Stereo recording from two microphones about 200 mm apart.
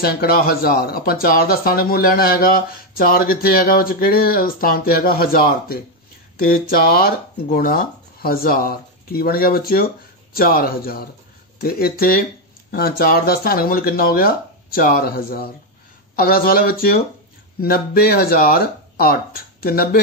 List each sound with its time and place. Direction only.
0.0 s speech: 50° left (ahead or behind)